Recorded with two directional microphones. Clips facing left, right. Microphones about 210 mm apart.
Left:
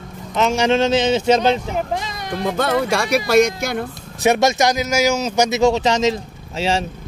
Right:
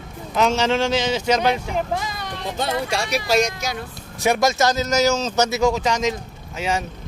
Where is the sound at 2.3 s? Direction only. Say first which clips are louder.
Left 7 dB; 55° left (ahead or behind).